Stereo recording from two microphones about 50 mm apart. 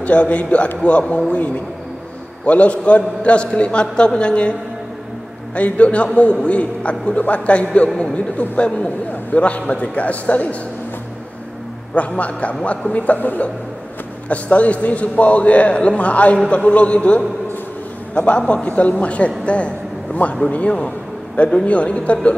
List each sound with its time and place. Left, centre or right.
0.0 s a man's voice: left
2.4 s a man's voice: left
12.2 s a man's voice: left